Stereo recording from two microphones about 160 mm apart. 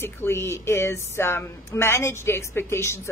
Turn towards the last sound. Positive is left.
turn(degrees=15)  # may be behind; listen again after turning